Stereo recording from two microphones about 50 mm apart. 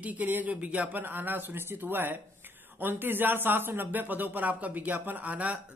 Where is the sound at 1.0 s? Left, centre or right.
Right.